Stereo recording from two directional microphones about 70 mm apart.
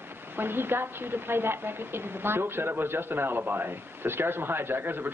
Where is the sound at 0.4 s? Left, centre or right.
Right.